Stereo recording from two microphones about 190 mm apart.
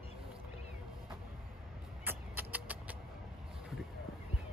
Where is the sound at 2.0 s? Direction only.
10° right (ahead or behind).